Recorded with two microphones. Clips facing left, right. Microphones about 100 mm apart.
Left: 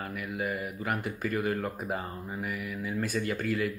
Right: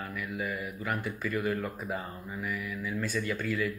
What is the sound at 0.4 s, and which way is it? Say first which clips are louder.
Speech: left 4 dB; 50° left (ahead or behind).